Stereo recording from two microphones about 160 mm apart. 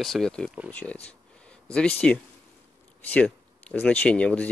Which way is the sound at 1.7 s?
5° left (ahead or behind).